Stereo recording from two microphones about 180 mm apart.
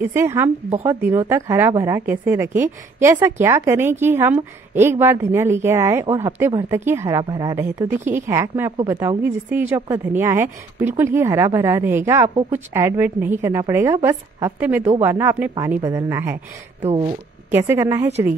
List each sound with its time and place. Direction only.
0.0 s a woman's voice: 15° right (ahead or behind)
17.5 s a woman's voice: 10° right (ahead or behind)